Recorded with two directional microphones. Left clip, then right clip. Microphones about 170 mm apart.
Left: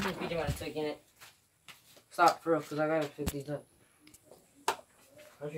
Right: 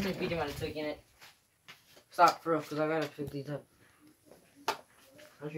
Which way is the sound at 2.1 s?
20° left (ahead or behind).